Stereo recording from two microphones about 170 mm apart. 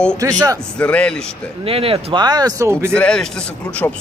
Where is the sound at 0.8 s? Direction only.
5° left (ahead or behind).